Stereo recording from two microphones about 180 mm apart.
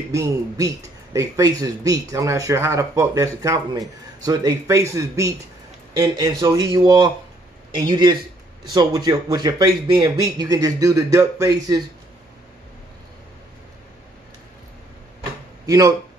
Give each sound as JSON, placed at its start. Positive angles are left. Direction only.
{"t": 0.1, "sound": "speech", "side_deg": -15}
{"t": 15.6, "sound": "speech", "side_deg": -20}